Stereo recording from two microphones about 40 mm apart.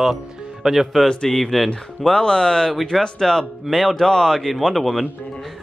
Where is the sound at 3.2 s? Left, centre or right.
Centre.